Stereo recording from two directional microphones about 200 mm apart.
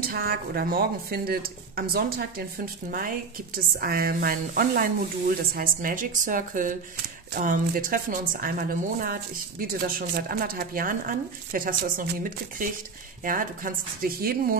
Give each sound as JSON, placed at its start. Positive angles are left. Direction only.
{"t": 0.0, "sound": "a woman's voice", "side_deg": -50}